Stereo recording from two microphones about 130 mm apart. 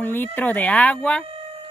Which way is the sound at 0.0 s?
15° left (ahead or behind).